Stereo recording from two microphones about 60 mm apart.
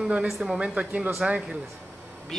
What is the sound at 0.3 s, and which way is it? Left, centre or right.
Speech, centre.